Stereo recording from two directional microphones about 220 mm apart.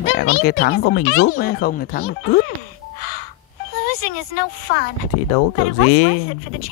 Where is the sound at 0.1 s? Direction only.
45° left (ahead or behind).